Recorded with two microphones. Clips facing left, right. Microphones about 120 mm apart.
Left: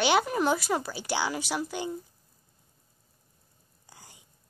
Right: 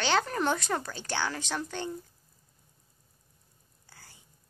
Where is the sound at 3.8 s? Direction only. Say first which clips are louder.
Left 3 dB; 15° left (ahead or behind).